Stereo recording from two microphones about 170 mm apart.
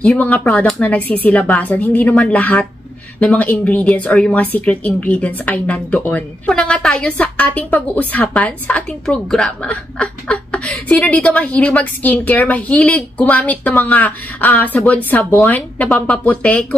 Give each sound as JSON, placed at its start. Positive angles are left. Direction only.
{"t": 0.0, "sound": "speech", "side_deg": 10}